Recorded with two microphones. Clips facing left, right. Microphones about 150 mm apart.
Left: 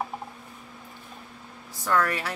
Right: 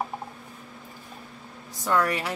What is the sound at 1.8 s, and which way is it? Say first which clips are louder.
Speech: right 1 dB; 15° right (ahead or behind).